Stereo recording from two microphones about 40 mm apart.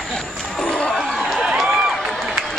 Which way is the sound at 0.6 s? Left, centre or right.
Left.